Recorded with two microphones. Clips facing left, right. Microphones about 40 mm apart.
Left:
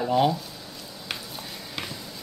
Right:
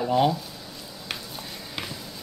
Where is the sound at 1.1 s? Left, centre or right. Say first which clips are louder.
Even; centre.